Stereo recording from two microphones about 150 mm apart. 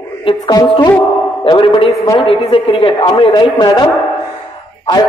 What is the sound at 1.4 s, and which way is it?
A man's voice, 35° left (ahead or behind).